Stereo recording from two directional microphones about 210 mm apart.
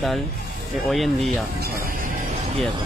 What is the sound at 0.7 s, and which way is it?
Speech, centre (ahead or behind).